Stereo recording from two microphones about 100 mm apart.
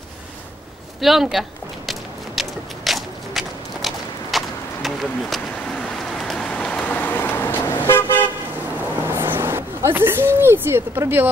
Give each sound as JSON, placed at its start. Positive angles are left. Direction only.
{"t": 1.0, "sound": "speech", "side_deg": 0}
{"t": 1.9, "sound": "a sound", "side_deg": 0}
{"t": 6.1, "sound": "vehicle", "side_deg": 5}
{"t": 9.0, "sound": "speech", "side_deg": -25}